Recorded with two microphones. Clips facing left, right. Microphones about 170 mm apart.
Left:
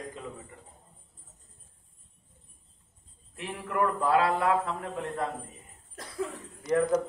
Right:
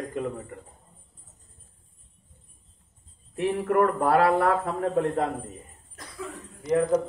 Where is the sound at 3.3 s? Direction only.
50° right (ahead or behind).